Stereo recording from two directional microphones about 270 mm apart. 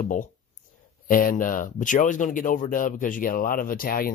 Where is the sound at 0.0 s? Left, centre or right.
Left.